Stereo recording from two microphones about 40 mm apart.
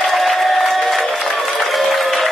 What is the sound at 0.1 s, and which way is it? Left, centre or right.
Applause, centre.